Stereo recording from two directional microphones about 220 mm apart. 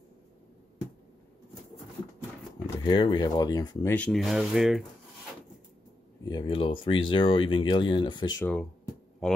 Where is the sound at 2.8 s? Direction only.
20° left (ahead or behind).